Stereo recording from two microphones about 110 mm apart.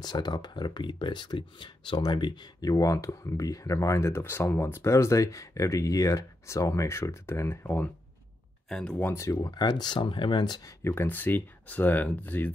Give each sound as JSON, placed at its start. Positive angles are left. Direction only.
{"t": 0.0, "sound": "speech", "side_deg": 40}
{"t": 8.6, "sound": "speech", "side_deg": 5}
{"t": 8.9, "sound": "speech", "side_deg": 20}
{"t": 10.8, "sound": "speech", "side_deg": 20}